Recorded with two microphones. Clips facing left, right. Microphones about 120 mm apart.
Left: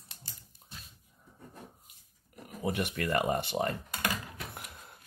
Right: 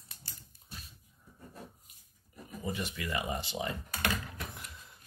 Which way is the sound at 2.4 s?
65° left (ahead or behind).